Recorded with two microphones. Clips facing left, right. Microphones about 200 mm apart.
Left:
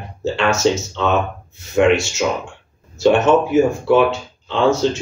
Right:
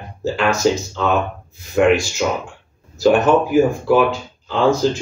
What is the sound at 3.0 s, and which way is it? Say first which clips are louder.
Speech: even; centre (ahead or behind).